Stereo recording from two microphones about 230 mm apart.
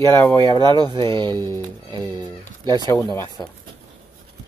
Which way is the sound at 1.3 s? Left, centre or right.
Centre.